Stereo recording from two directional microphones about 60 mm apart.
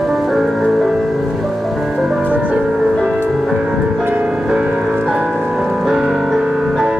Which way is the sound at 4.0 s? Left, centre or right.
Right.